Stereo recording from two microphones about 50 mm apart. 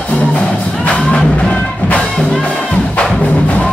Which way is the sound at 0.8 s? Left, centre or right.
Left.